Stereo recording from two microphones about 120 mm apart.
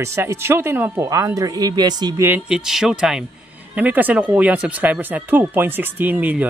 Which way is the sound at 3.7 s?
15° right (ahead or behind).